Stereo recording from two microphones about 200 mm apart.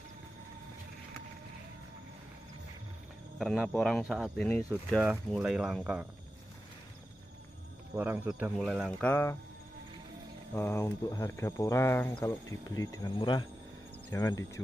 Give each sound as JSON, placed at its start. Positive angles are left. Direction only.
{"t": 3.3, "sound": "speech", "side_deg": 0}
{"t": 7.9, "sound": "speech", "side_deg": -10}
{"t": 10.5, "sound": "speech", "side_deg": 10}